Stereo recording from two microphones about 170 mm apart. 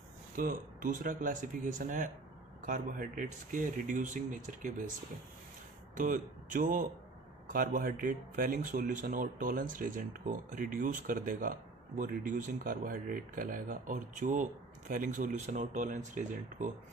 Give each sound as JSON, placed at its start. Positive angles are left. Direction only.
{"t": 0.4, "sound": "speech", "side_deg": -55}
{"t": 5.9, "sound": "speech", "side_deg": -50}